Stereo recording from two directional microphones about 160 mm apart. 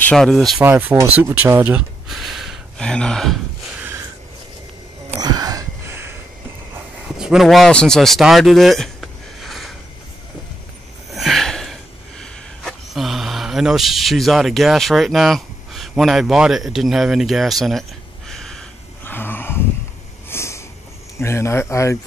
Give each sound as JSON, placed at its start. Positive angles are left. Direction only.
{"t": 0.1, "sound": "speech", "side_deg": 0}
{"t": 0.7, "sound": "speech", "side_deg": -10}
{"t": 5.2, "sound": "a sound", "side_deg": -25}
{"t": 7.2, "sound": "speech", "side_deg": -5}
{"t": 11.1, "sound": "a sound", "side_deg": 0}
{"t": 21.2, "sound": "speech", "side_deg": 15}